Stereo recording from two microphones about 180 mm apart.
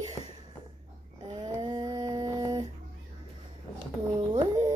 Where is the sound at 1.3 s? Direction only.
25° right (ahead or behind).